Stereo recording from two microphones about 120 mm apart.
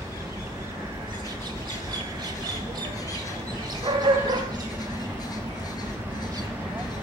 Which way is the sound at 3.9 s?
40° right (ahead or behind).